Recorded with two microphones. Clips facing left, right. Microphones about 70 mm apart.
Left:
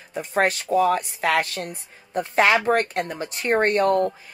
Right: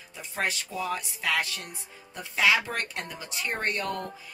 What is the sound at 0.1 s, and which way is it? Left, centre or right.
Speech, left.